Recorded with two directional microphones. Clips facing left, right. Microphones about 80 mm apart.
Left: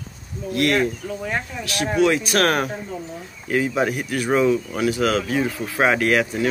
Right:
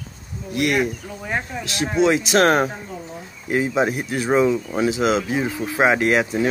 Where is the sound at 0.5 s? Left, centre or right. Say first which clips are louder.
Left 1 dB; centre.